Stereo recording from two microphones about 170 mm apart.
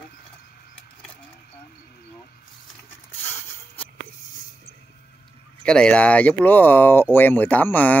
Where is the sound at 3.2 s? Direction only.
35° left (ahead or behind).